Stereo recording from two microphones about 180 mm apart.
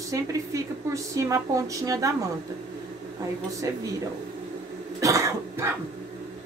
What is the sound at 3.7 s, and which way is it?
Speech, 20° right (ahead or behind).